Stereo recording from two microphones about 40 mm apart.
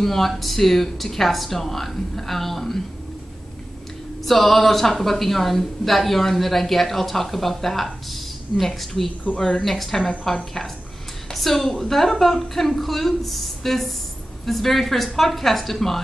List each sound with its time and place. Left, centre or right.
0.0 s a woman's voice: centre
4.3 s a woman's voice: centre